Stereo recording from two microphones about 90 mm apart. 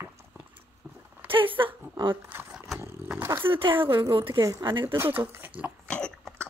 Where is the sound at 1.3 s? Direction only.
75° right (ahead or behind).